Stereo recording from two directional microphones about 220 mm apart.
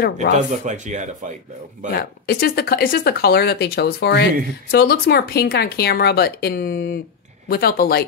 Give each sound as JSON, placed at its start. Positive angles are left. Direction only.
{"t": 0.5, "sound": "speech", "side_deg": -35}
{"t": 2.0, "sound": "speech", "side_deg": 45}